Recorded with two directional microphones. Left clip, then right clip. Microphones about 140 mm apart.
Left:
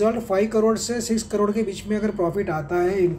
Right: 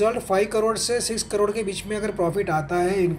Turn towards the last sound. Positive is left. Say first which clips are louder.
# left 1 dB
turn(degrees=15)  # may be behind; listen again after turning